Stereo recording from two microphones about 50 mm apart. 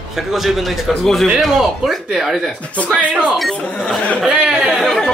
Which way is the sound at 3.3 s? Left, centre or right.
Centre.